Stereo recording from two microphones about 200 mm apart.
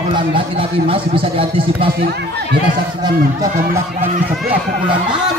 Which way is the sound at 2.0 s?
55° right (ahead or behind).